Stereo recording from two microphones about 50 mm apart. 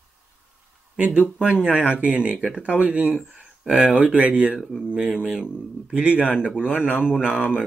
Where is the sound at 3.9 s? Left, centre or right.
Right.